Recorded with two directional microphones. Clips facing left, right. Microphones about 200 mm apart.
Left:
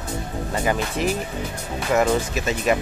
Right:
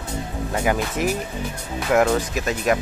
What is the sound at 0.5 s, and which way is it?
Speech, 10° right (ahead or behind).